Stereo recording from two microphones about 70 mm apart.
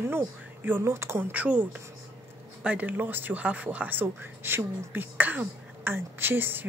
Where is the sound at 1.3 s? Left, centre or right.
Right.